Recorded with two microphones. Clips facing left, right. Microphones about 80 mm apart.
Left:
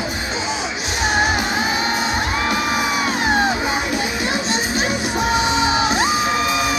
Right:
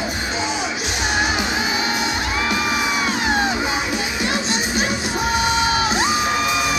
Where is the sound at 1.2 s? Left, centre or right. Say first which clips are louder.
Left 2 dB; left.